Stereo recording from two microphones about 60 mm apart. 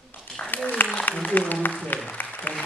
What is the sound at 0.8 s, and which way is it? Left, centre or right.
Speech, left.